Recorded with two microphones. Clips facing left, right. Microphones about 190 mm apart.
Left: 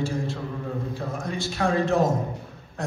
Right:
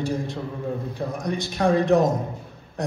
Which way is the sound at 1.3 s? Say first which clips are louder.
Right 4 dB; 15° right (ahead or behind).